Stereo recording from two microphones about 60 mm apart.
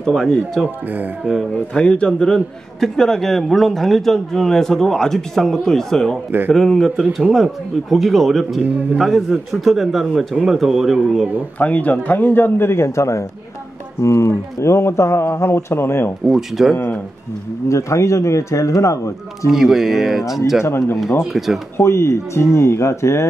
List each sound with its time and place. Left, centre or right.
0.0 s a man's voice: centre
1.7 s a man's voice: centre
11.5 s speech: left
16.3 s speech: centre
17.6 s speech: left
19.5 s speech: centre
21.7 s speech: left